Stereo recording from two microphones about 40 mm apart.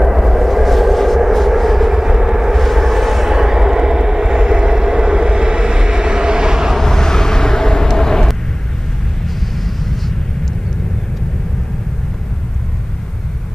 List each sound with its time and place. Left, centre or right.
0.0 s vehicle: centre
2.5 s vehicle: centre
3.3 s vehicle: centre
6.8 s vehicle: centre
9.8 s vehicle: centre